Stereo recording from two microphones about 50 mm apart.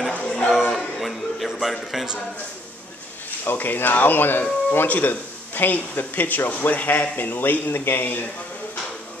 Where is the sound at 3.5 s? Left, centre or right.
Left.